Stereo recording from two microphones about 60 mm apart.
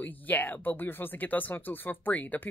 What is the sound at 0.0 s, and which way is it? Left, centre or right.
Speech, left.